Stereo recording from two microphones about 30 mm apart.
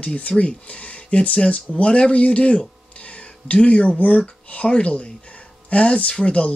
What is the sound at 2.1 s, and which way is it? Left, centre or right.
Speech, left.